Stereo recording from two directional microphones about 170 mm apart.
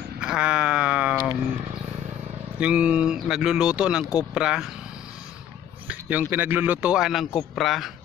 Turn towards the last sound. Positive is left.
turn(degrees=0)  # may be behind; listen again after turning